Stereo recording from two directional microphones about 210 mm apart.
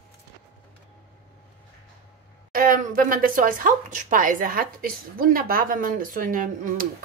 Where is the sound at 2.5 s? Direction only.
45° right (ahead or behind).